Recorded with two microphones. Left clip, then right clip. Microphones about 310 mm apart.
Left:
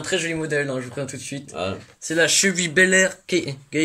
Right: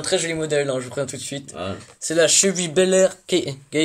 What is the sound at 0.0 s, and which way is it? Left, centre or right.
Speech, centre.